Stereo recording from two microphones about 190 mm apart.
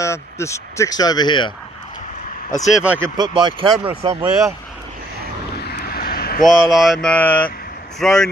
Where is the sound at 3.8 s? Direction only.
30° right (ahead or behind).